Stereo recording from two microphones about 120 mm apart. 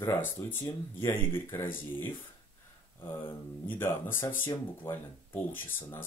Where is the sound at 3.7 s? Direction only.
20° left (ahead or behind).